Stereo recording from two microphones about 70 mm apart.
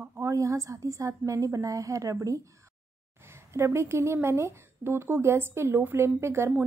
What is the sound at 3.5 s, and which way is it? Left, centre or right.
Speech, right.